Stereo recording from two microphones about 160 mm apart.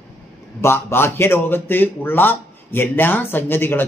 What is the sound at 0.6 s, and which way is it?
Speech, 15° left (ahead or behind).